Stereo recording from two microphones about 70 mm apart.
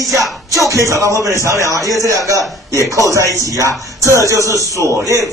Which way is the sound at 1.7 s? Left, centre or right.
Left.